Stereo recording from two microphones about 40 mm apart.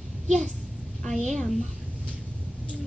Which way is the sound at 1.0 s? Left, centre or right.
Centre.